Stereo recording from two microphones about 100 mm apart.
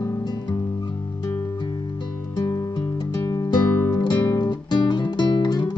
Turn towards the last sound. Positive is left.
turn(degrees=45)  # may be behind; listen again after turning